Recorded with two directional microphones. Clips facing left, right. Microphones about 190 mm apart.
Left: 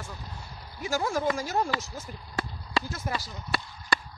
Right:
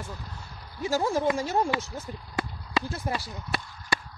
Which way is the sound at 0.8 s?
30° right (ahead or behind).